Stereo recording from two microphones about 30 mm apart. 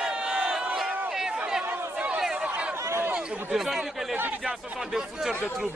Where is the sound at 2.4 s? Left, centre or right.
Right.